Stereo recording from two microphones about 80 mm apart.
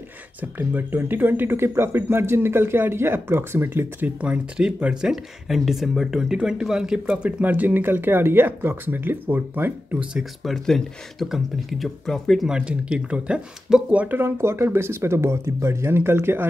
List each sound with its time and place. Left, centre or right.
0.4 s speech: right
4.2 s speech: centre
5.1 s speech: centre; by 10.0 s right
10.1 s speech: centre
12.4 s speech: centre; by 16.4 s right